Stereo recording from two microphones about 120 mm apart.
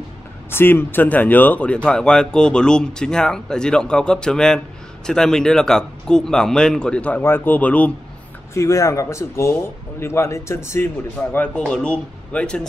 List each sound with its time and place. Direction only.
0.5 s speech: 20° left (ahead or behind)
8.5 s speech: 25° left (ahead or behind); by 12.6 s 10° left (ahead or behind)